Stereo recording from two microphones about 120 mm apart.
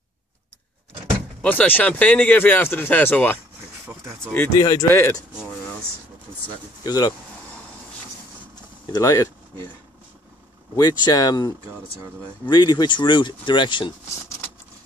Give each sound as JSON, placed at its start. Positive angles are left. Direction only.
{"t": 1.4, "sound": "speech", "side_deg": 15}
{"t": 3.8, "sound": "a sound", "side_deg": -20}
{"t": 4.6, "sound": "speech", "side_deg": 30}
{"t": 6.8, "sound": "speech", "side_deg": 35}
{"t": 8.9, "sound": "speech", "side_deg": 30}
{"t": 10.8, "sound": "speech", "side_deg": 35}